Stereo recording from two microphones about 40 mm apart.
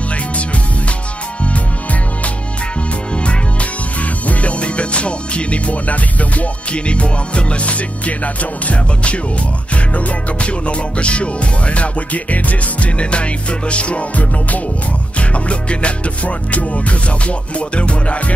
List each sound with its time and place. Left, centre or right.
4.0 s music: left